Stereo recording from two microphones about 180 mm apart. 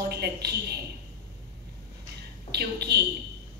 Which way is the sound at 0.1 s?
65° right (ahead or behind).